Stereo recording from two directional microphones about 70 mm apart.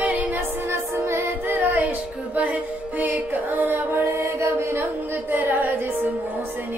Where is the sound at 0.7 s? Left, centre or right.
Right.